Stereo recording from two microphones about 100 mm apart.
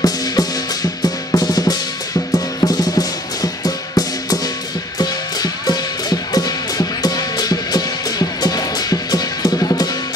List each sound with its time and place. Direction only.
0.0 s music: 40° left (ahead or behind)
1.0 s drum: 40° left (ahead or behind)
2.3 s music: 40° left (ahead or behind)